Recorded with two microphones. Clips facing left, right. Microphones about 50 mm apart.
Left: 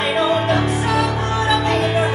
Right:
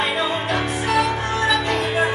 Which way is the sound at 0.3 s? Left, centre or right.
Centre.